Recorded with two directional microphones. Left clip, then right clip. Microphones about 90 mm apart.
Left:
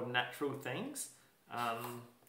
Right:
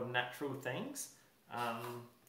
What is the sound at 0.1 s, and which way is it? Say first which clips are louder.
Speech: left 4 dB; 20° right (ahead or behind).